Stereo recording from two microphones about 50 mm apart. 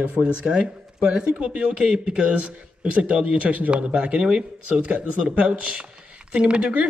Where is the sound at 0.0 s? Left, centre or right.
Centre.